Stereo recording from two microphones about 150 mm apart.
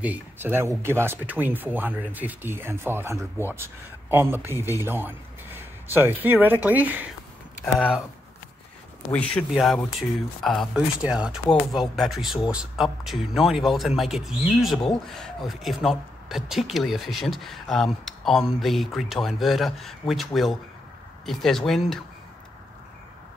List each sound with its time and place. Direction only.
0.0 s speech: 10° right (ahead or behind)
7.6 s speech: centre (ahead or behind)
9.5 s speech: centre (ahead or behind)